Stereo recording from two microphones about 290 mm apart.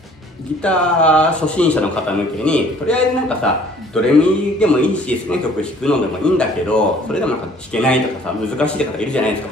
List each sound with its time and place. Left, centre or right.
0.6 s a man's voice: centre